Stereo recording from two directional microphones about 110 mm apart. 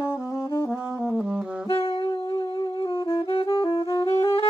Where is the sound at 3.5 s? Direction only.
50° left (ahead or behind).